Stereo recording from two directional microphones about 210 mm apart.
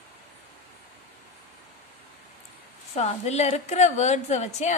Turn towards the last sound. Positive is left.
turn(degrees=35)  # may be behind; listen again after turning